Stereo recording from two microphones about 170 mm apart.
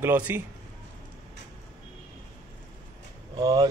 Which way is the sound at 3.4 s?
25° right (ahead or behind).